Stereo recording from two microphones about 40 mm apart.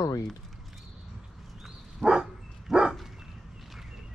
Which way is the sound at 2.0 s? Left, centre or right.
Centre.